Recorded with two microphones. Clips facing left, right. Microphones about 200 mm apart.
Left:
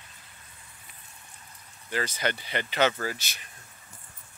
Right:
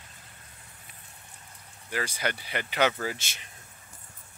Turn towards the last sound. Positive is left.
turn(degrees=-25)  # may be behind; listen again after turning